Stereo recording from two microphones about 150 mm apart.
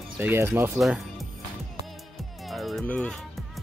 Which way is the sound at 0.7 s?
Centre (ahead or behind).